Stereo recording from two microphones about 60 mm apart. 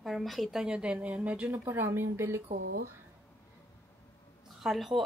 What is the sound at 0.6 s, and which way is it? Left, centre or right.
Speech, centre.